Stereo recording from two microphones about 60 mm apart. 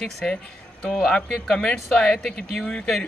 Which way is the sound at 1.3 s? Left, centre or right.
Centre.